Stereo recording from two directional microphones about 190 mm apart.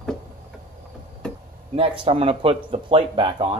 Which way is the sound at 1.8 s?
30° right (ahead or behind).